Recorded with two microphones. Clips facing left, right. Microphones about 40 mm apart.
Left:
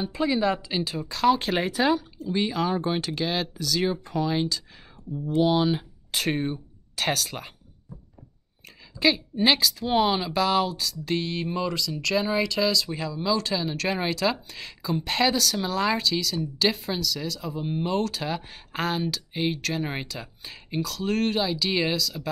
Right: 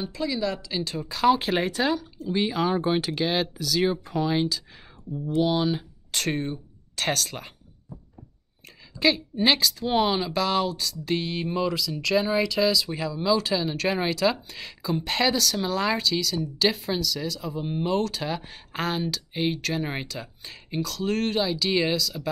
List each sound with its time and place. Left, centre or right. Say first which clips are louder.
0.1 s speech: left 5 dB; left
0.8 s speech: right 1 dB; centre
2.2 s speech: right 2 dB; centre
5.4 s speech: left 2 dB; centre
8.6 s speech: even; centre